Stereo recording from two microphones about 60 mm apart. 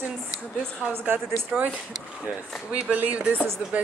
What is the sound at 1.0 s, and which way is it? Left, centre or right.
Speech, right.